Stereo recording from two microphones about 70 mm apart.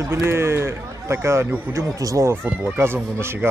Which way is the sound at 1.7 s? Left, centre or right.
Right.